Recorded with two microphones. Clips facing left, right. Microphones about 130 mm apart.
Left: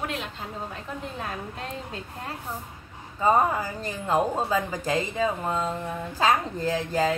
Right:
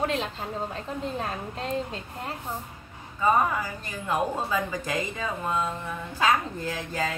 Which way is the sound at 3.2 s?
30° left (ahead or behind).